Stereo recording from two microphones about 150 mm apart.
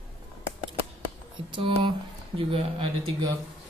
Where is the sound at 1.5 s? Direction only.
35° right (ahead or behind).